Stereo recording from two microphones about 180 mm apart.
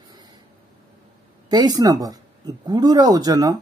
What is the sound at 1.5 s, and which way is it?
Speech, 20° right (ahead or behind).